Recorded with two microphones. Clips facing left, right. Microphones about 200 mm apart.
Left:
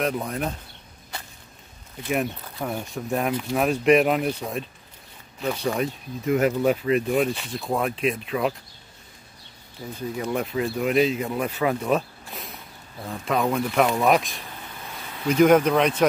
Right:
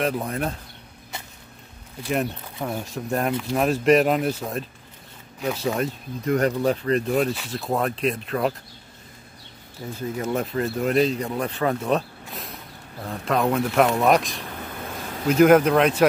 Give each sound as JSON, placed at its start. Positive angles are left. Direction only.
{"t": 0.0, "sound": "speech", "side_deg": 0}
{"t": 2.1, "sound": "speech", "side_deg": 0}
{"t": 9.9, "sound": "speech", "side_deg": 0}
{"t": 14.8, "sound": "a sound", "side_deg": -50}
{"t": 15.2, "sound": "speech", "side_deg": -5}